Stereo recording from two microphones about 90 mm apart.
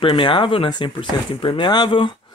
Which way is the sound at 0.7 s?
60° left (ahead or behind).